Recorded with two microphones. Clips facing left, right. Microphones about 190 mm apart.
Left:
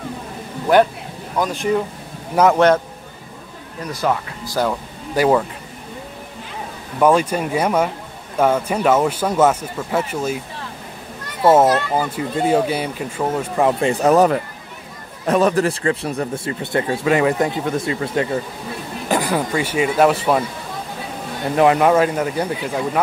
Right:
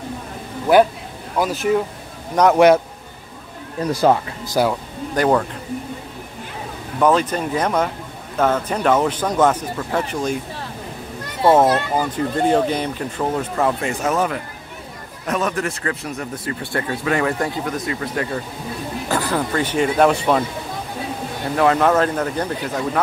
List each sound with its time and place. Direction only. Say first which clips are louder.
0.7 s a man's voice: right 1 dB; 10° right (ahead or behind)
3.9 s speech: right 5 dB; 30° right (ahead or behind)
4.5 s a man's voice: right 2 dB; 10° right (ahead or behind)
5.1 s speech: left 1 dB; 5° left (ahead or behind)
7.0 s speech: left 2 dB; 10° left (ahead or behind)
12.2 s speech: right 1 dB; 10° left (ahead or behind)
13.7 s speech: left 5 dB; 30° left (ahead or behind); by 20.4 s 5° left (ahead or behind)
21.5 s speech: left 2 dB; 15° left (ahead or behind)